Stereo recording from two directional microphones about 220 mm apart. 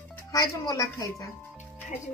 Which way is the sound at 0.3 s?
15° left (ahead or behind).